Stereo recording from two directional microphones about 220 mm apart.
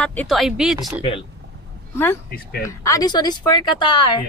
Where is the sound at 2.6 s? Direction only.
15° left (ahead or behind).